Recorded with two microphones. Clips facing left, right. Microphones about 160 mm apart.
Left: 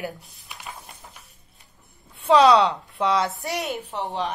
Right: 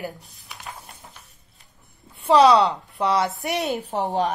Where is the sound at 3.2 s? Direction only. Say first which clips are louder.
Right 2 dB; 20° right (ahead or behind).